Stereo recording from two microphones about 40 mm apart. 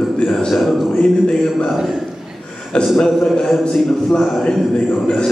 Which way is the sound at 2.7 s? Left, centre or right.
Left.